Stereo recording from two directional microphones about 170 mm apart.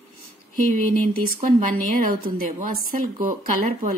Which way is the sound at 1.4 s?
55° right (ahead or behind).